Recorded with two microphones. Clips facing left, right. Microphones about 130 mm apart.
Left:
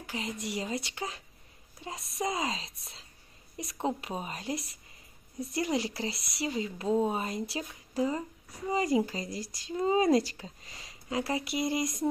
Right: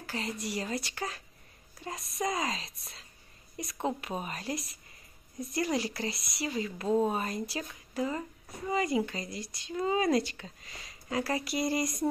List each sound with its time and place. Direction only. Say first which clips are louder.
0.0 s speech: even; 15° left (ahead or behind)
3.8 s speech: left 1 dB; 25° left (ahead or behind)